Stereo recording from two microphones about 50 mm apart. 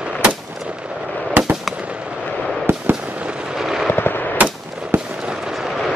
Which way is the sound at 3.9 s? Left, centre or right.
Left.